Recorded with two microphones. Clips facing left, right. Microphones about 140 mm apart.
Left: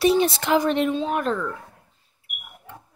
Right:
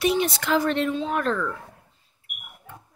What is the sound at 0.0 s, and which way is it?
Speech, 30° left (ahead or behind).